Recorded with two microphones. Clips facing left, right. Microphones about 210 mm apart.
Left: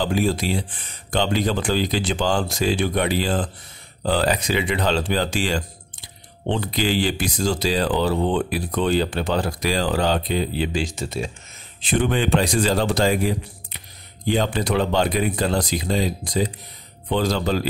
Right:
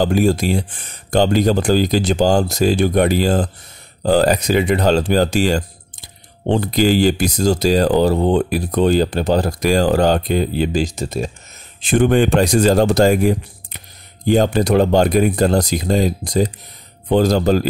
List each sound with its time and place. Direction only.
0.0 s speech: 45° right (ahead or behind)